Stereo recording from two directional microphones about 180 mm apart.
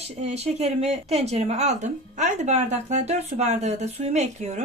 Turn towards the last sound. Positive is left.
turn(degrees=-40)  # may be behind; listen again after turning